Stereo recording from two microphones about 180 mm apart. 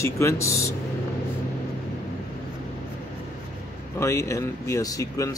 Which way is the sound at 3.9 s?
15° left (ahead or behind).